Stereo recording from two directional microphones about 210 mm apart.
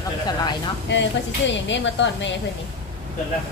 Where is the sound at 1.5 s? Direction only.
60° left (ahead or behind).